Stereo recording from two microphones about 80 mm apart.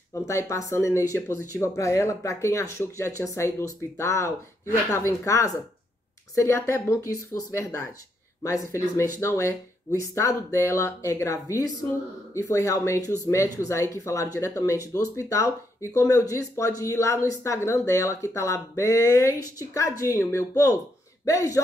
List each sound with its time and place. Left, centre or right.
0.1 s speech: left